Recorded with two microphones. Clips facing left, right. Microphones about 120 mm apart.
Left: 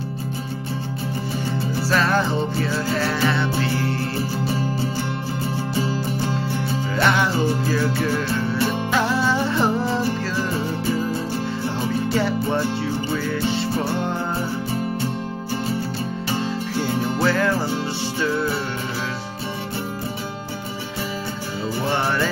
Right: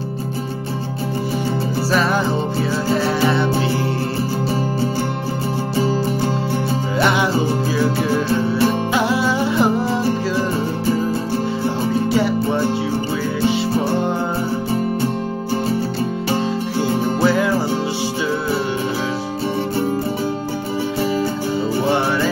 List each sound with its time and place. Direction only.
1.9 s music: 10° right (ahead or behind)
7.0 s music: 15° right (ahead or behind)
17.2 s music: 10° right (ahead or behind)